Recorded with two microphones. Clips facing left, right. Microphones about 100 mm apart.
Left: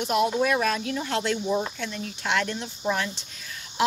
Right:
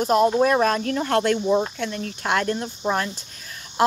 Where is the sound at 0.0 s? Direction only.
40° right (ahead or behind).